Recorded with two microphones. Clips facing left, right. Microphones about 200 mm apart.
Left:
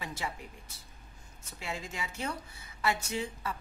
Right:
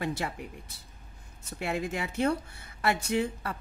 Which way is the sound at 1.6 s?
60° right (ahead or behind).